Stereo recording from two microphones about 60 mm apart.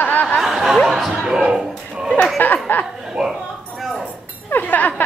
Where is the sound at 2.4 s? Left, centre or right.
Left.